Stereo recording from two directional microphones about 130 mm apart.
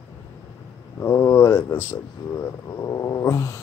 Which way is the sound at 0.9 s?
20° left (ahead or behind).